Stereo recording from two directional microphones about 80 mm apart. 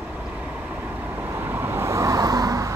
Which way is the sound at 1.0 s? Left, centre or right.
Right.